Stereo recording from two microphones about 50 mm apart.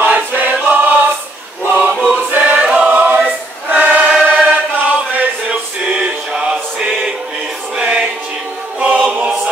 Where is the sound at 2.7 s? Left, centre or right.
Centre.